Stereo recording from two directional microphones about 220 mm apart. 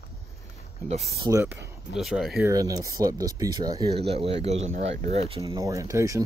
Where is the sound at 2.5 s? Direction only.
15° right (ahead or behind).